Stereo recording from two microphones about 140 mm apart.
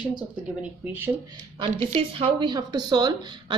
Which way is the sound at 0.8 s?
15° right (ahead or behind).